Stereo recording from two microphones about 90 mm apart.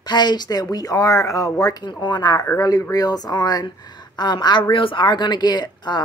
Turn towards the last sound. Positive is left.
turn(degrees=50)  # may be behind; listen again after turning